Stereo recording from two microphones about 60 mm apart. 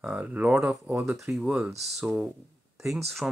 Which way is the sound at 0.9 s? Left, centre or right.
Right.